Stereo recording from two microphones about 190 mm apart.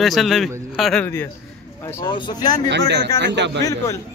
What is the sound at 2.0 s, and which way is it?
Speech, 25° left (ahead or behind).